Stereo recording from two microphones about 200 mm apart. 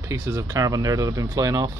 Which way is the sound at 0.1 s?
15° right (ahead or behind).